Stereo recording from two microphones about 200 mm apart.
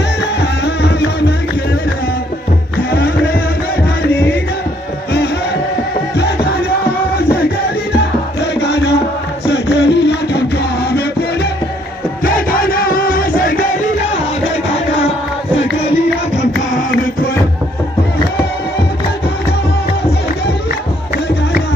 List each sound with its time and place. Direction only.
0.4 s music: 55° left (ahead or behind)
8.5 s music: 60° left (ahead or behind)
12.4 s music: 45° left (ahead or behind)